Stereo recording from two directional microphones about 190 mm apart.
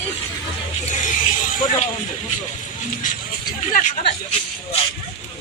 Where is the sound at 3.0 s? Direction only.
45° left (ahead or behind).